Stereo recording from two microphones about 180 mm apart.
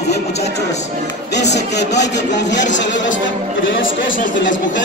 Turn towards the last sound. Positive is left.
turn(degrees=90)